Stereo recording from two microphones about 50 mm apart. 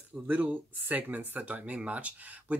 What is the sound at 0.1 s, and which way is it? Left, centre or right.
Speech, right.